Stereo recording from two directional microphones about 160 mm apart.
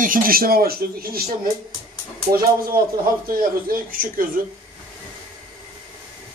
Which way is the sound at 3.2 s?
65° right (ahead or behind).